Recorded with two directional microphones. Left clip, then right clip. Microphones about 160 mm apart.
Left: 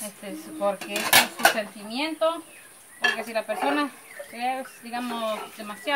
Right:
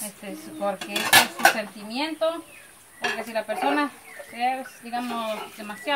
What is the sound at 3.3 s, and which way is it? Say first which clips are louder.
Speech: right 1 dB; 5° left (ahead or behind).